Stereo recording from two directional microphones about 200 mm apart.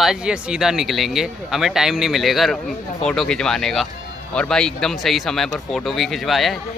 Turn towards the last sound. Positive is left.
turn(degrees=0)  # may be behind; listen again after turning